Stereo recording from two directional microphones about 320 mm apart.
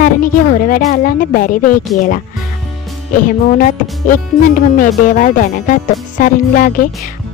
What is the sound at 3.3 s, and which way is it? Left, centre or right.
Speech, left.